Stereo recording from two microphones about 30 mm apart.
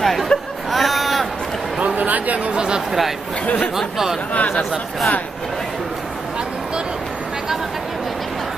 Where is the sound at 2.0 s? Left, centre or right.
Right.